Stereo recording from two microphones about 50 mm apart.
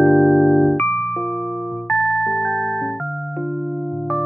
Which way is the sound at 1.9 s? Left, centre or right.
Centre.